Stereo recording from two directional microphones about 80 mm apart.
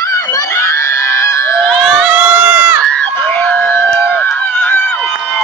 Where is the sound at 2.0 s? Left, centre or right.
Centre.